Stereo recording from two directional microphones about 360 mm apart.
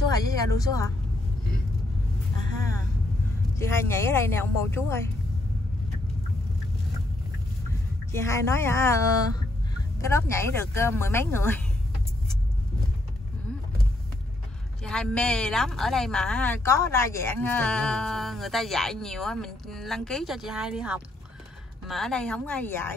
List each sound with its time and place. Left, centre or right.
0.1 s speech: centre
3.5 s speech: centre
8.1 s speech: centre
9.9 s speech: centre
14.8 s speech: centre